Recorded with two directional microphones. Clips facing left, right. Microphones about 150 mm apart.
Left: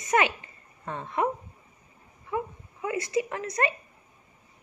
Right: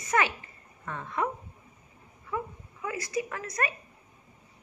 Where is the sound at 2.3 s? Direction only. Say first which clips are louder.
Left 3 dB; 25° left (ahead or behind).